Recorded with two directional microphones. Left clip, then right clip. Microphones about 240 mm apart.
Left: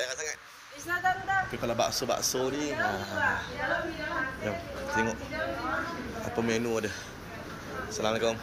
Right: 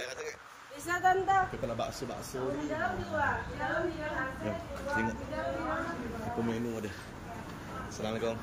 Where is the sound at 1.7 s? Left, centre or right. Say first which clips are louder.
Left 8 dB; centre.